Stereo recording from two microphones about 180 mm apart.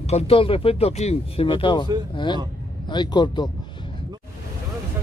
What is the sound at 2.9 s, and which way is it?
Speech, 25° left (ahead or behind).